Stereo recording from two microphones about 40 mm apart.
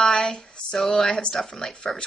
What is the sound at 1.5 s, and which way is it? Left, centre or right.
Speech, centre.